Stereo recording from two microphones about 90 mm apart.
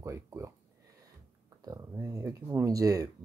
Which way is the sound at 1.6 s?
40° right (ahead or behind).